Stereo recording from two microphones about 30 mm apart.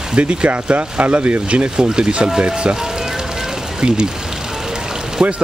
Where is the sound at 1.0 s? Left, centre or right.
Right.